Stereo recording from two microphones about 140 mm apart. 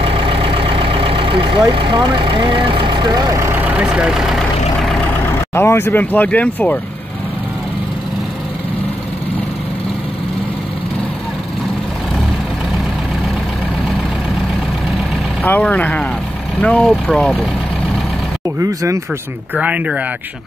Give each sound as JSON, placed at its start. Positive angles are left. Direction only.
{"t": 0.0, "sound": "vehicle", "side_deg": -40}
{"t": 3.5, "sound": "speech", "side_deg": -10}
{"t": 5.5, "sound": "speech", "side_deg": 15}
{"t": 15.4, "sound": "speech", "side_deg": 10}
{"t": 18.6, "sound": "speech", "side_deg": -25}
{"t": 19.5, "sound": "speech", "side_deg": -10}